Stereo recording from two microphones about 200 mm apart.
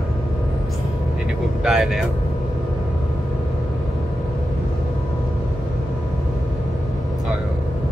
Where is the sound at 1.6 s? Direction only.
Centre (ahead or behind).